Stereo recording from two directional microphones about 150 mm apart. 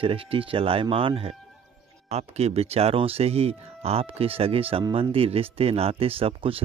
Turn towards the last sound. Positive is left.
turn(degrees=-40)  # may be behind; listen again after turning